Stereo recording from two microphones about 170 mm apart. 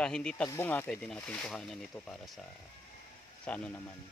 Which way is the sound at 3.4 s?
10° left (ahead or behind).